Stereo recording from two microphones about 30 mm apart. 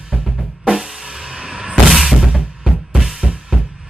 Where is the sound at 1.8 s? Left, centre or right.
Centre.